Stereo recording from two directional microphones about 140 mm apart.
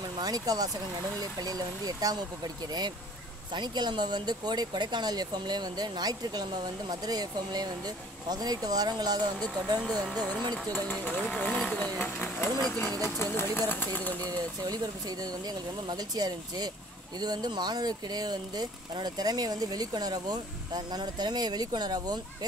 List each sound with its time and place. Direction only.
0.2 s speech: 25° right (ahead or behind)
10.5 s speech: 10° left (ahead or behind)
14.2 s speech: 25° right (ahead or behind)